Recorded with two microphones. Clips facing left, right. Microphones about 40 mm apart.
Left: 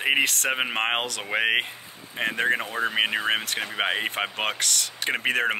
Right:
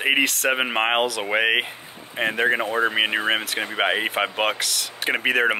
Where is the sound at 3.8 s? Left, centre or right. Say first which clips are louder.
Right 5 dB; centre.